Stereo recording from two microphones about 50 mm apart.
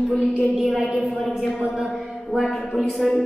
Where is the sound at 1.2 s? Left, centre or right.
Centre.